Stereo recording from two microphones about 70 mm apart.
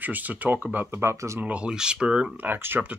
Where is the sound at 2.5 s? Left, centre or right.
Right.